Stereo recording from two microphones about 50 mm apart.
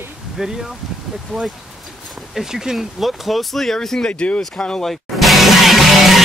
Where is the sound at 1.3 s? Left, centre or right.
Centre.